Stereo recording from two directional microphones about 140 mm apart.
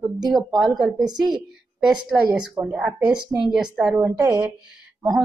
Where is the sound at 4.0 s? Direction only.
20° right (ahead or behind).